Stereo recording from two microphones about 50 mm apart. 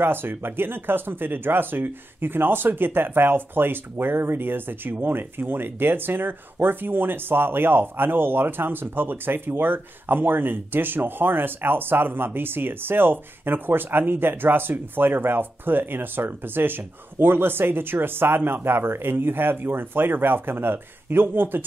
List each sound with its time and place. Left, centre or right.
0.0 s speech: right